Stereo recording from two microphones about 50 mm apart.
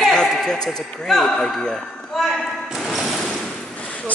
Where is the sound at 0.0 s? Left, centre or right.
Centre.